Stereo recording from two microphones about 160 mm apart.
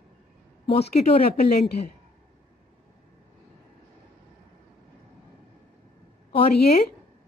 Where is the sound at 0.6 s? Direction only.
35° left (ahead or behind).